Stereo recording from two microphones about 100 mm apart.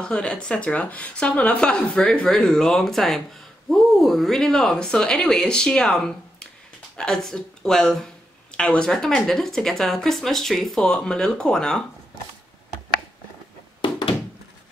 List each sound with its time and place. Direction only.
0.0 s speech: 10° left (ahead or behind)
13.7 s thunk: 55° left (ahead or behind)